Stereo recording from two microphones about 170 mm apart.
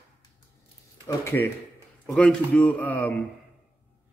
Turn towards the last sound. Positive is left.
turn(degrees=10)  # may be behind; listen again after turning